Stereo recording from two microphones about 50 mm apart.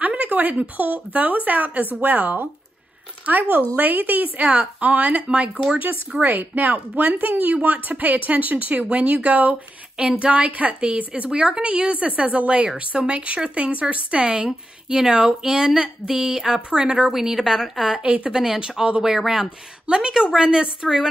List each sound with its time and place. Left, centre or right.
0.0 s a woman's voice: right
17.1 s speech: centre
18.0 s a woman's voice: right
18.3 s speech: centre